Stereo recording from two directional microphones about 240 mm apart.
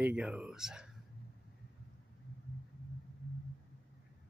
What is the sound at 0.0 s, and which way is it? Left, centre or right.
Speech, centre.